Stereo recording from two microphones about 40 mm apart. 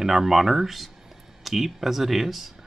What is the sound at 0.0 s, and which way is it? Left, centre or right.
Speech, centre.